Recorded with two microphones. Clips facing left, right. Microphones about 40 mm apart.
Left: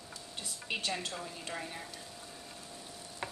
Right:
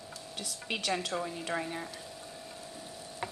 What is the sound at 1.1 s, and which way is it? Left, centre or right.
Speech, right.